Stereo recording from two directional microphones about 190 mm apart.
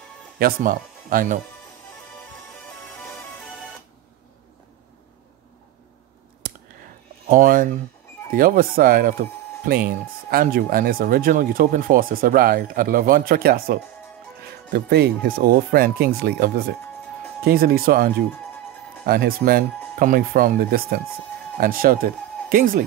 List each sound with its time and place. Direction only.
0.4 s speech: 50° right (ahead or behind)
7.2 s speech: 45° right (ahead or behind)